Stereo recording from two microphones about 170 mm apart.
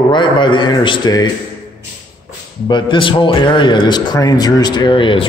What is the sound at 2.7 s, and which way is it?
A man's voice, 30° left (ahead or behind).